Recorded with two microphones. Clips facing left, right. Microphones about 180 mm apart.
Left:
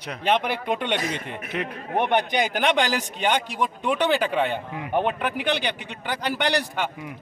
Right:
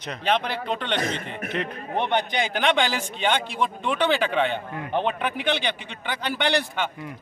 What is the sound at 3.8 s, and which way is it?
Speech, 5° left (ahead or behind).